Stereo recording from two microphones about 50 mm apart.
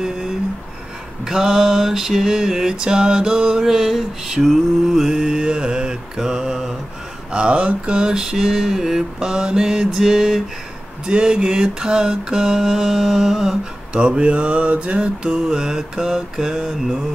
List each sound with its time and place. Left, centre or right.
1.2 s a sound: centre
7.3 s mantra: right; by 10.4 s centre
11.1 s mantra: centre
13.9 s mantra: centre